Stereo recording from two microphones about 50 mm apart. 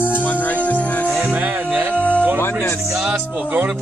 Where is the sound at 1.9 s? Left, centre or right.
Left.